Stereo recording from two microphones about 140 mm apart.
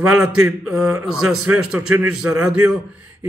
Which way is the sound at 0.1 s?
5° right (ahead or behind).